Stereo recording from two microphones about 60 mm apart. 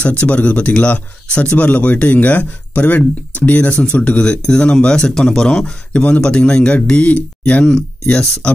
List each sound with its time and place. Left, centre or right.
0.0 s speech: left